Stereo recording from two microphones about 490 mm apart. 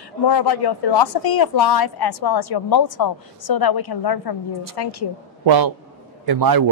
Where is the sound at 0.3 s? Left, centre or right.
Left.